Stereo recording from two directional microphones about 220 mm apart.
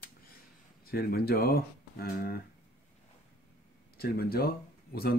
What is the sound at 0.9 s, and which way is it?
Speech, 45° left (ahead or behind).